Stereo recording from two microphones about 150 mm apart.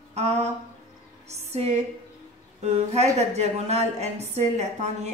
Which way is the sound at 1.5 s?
45° right (ahead or behind).